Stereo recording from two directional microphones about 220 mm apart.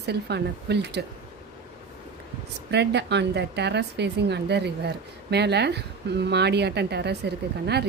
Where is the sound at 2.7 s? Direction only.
50° right (ahead or behind).